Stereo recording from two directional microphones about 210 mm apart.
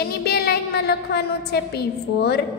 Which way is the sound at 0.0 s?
50° left (ahead or behind).